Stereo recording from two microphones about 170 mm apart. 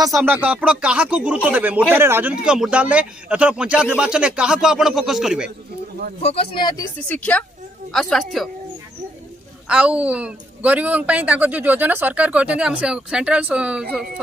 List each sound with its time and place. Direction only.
0.0 s speech: 15° right (ahead or behind)
6.2 s speech: 35° left (ahead or behind)
7.1 s a woman's voice: 10° left (ahead or behind)
9.7 s speech: 5° right (ahead or behind)